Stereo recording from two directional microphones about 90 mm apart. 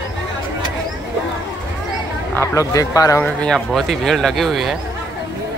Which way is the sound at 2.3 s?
35° left (ahead or behind).